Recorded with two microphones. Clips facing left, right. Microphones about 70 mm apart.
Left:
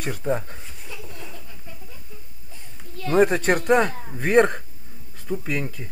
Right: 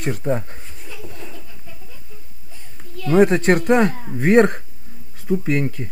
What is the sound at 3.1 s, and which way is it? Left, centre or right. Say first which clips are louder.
Speech: right 4 dB; right.